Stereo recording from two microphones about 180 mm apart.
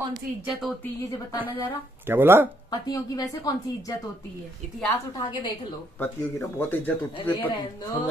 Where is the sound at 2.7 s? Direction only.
20° left (ahead or behind).